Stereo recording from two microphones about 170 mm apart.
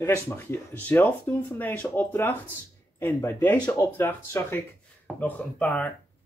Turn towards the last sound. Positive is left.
turn(degrees=10)  # may be behind; listen again after turning